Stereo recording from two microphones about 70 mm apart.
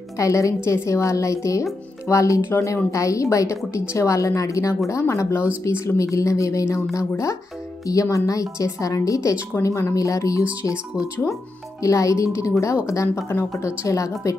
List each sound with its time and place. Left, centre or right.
0.2 s speech: left
11.8 s speech: left